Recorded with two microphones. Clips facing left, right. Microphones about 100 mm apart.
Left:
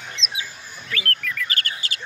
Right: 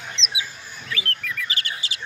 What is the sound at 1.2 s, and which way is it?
Chirp, 55° left (ahead or behind).